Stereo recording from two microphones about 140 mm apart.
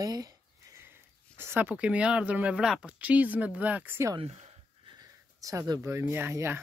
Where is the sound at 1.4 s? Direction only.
15° right (ahead or behind).